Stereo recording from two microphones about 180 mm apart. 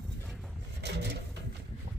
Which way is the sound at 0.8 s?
70° right (ahead or behind).